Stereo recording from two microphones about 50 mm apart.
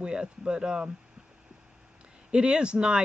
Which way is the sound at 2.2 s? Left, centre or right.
Centre.